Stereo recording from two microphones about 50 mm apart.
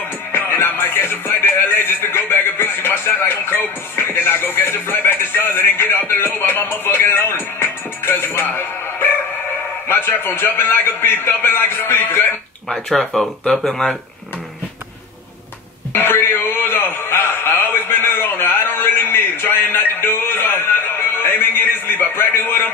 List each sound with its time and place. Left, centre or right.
0.5 s music: left
4.6 s speech: left
13.5 s speech: centre
15.9 s a sound: left